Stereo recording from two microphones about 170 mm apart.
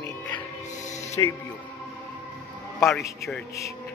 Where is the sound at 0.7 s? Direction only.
45° left (ahead or behind).